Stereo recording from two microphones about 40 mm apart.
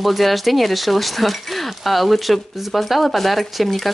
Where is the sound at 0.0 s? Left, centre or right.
Centre.